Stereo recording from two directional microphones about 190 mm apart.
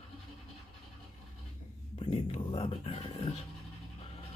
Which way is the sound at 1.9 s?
30° left (ahead or behind).